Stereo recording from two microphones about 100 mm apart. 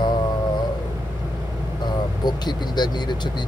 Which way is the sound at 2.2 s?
45° left (ahead or behind).